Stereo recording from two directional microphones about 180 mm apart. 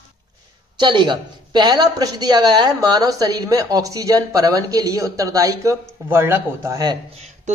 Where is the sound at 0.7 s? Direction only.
25° right (ahead or behind).